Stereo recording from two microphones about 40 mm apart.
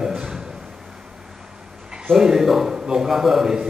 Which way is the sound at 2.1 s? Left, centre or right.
Centre.